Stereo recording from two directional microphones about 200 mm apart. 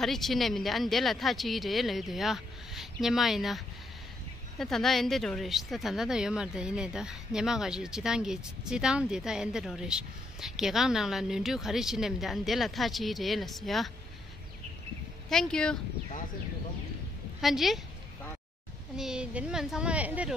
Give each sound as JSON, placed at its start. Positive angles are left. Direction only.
{"t": 0.0, "sound": "a woman's voice", "side_deg": 0}
{"t": 15.2, "sound": "a woman's voice", "side_deg": 5}
{"t": 17.4, "sound": "a woman's voice", "side_deg": 0}
{"t": 18.9, "sound": "a woman's voice", "side_deg": -5}